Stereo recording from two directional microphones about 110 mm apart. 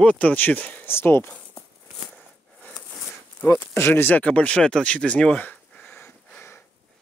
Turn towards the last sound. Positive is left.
turn(degrees=20)  # may be behind; listen again after turning